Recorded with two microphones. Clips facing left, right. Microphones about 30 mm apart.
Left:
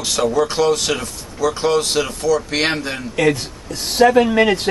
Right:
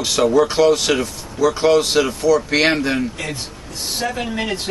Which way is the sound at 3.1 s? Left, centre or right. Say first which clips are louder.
Left 10 dB; left.